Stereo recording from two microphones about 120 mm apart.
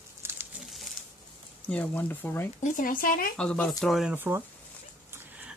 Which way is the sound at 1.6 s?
10° left (ahead or behind).